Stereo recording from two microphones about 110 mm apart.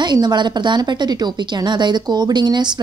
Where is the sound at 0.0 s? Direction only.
40° right (ahead or behind).